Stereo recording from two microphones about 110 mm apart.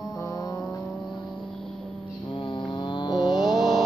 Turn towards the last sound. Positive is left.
turn(degrees=0)  # may be behind; listen again after turning